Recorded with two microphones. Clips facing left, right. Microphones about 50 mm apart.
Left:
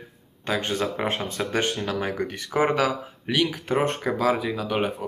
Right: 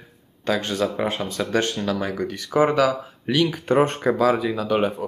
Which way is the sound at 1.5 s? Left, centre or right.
Left.